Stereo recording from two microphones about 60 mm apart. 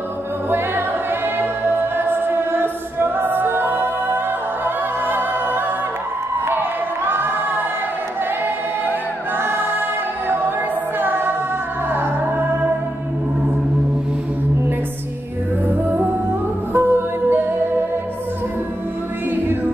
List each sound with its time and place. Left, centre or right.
0.5 s music: right
7.1 s music: right
9.4 s music: right
16.7 s music: right
19.3 s music: right